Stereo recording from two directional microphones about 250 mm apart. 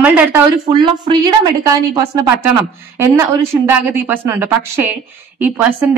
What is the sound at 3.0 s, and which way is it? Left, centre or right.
A woman's voice, centre.